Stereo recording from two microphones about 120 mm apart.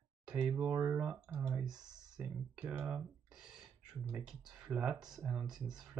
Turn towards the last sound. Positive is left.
turn(degrees=-5)  # may be behind; listen again after turning